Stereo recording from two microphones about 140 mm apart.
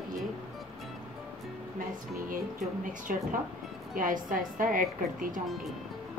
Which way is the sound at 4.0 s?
75° right (ahead or behind).